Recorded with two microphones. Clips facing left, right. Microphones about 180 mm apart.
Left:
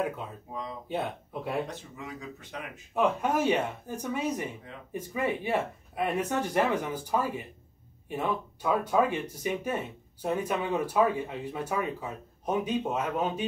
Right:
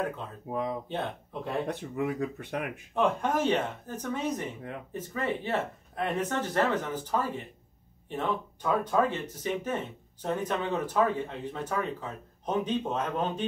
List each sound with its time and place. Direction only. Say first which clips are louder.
0.0 s speech: left 1 dB; 10° left (ahead or behind)
0.5 s speech: right 9 dB; 60° right (ahead or behind)
0.8 s speech: left 1 dB; 10° left (ahead or behind)
1.7 s speech: right 9 dB; 60° right (ahead or behind)
2.9 s speech: left 1 dB; 5° left (ahead or behind)